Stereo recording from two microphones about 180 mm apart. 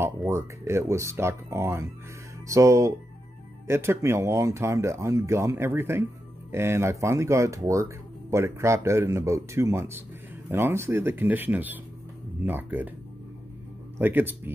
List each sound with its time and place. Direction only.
0.0 s speech: 15° right (ahead or behind)
13.9 s speech: 10° right (ahead or behind)